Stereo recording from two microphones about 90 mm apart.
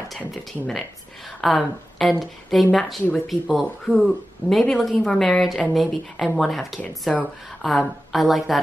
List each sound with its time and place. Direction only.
1.4 s a woman's voice: centre (ahead or behind)
6.8 s a woman's voice: 15° left (ahead or behind)
7.6 s speech: centre (ahead or behind)